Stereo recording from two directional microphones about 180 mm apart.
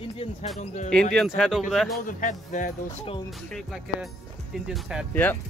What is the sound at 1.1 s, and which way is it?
Speech, centre (ahead or behind).